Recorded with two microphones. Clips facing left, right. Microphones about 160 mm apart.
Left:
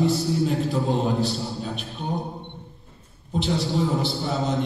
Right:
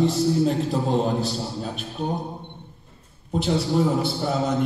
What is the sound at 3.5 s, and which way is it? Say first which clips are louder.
A man's voice: right 3 dB; centre (ahead or behind).